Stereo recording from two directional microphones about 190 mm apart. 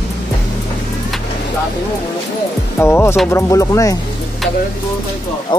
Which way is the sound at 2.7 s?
10° left (ahead or behind).